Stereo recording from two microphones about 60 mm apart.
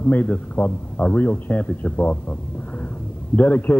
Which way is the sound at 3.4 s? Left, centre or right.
Left.